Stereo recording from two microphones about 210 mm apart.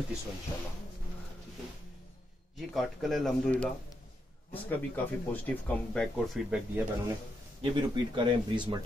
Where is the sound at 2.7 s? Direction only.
Centre (ahead or behind).